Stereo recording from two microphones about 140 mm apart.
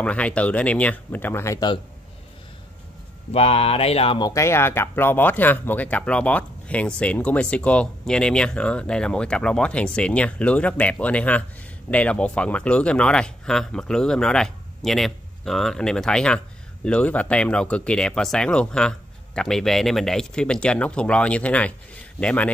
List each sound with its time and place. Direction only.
0.0 s speech: 10° left (ahead or behind); by 1.8 s 25° left (ahead or behind)
3.3 s speech: 45° left (ahead or behind)
4.2 s speech: 20° left (ahead or behind)